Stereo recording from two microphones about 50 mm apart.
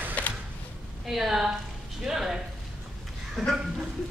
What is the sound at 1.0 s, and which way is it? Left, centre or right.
Speech, centre.